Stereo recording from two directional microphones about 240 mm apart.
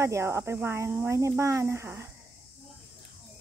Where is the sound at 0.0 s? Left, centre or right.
Centre.